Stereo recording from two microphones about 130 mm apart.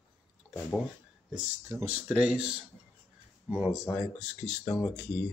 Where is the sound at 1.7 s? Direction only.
20° right (ahead or behind).